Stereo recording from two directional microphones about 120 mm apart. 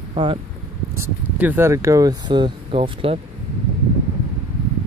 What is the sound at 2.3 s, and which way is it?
Speech, 45° right (ahead or behind).